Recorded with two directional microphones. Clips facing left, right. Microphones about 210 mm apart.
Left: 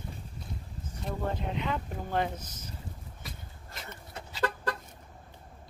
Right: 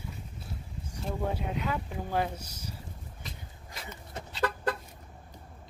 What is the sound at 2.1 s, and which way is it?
Speech, 10° right (ahead or behind).